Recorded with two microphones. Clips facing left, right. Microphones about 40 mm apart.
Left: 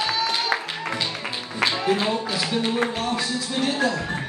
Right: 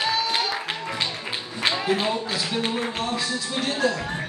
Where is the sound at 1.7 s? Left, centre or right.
Centre.